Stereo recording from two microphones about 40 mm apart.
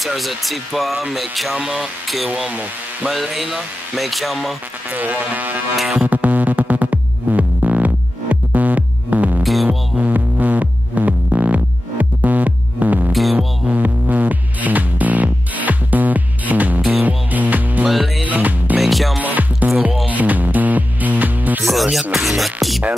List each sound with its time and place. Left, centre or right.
0.0 s speech: centre
1.6 s speech: right
3.1 s speech: centre
4.9 s a sound: right
6.0 s music: right
9.4 s music: centre
9.7 s music: right
13.1 s music: centre
13.7 s music: right
17.8 s music: centre
18.2 s music: right
18.8 s music: centre
19.2 s music: right
22.1 s music: centre